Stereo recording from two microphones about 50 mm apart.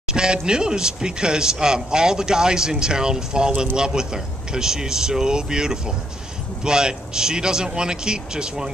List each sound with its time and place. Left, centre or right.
0.1 s speech: centre